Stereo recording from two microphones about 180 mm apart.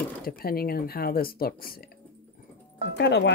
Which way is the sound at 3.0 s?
75° left (ahead or behind).